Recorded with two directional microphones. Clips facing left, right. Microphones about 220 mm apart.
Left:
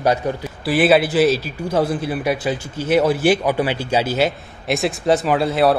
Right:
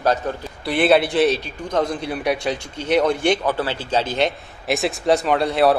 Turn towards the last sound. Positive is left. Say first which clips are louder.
# left 1 dB
turn(degrees=0)  # may be behind; listen again after turning